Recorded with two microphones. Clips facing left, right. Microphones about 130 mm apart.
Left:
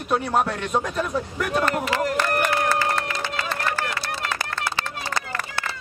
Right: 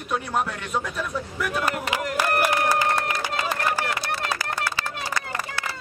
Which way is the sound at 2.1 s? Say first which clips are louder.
Even; 10° right (ahead or behind).